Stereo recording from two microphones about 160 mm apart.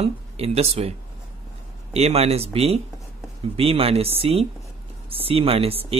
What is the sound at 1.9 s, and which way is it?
Speech, 40° right (ahead or behind).